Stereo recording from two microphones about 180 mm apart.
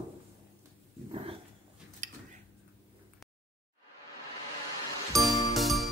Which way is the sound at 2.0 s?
45° right (ahead or behind).